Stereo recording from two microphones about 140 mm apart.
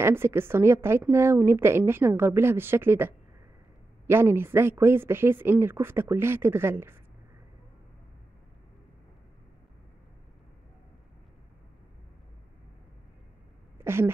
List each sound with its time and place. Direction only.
0.0 s a woman's voice: 15° right (ahead or behind)
13.7 s speech: 15° right (ahead or behind)